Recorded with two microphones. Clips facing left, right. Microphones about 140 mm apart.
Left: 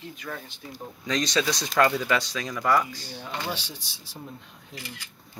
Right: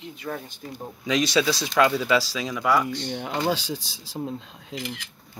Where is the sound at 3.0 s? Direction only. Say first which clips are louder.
Right 8 dB; 70° right (ahead or behind); by 4.2 s 90° right.